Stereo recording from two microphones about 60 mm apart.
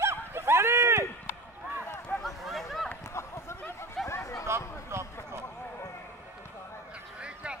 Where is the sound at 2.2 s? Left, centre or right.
Centre.